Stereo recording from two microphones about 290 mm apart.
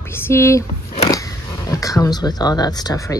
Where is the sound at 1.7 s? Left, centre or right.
Centre.